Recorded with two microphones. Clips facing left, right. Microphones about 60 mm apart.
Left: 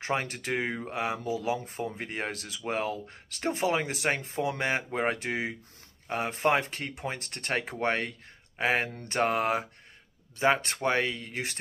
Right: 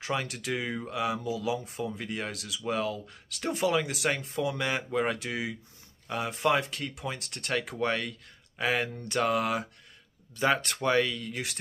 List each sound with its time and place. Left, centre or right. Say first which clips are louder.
0.0 s speech: left 1 dB; left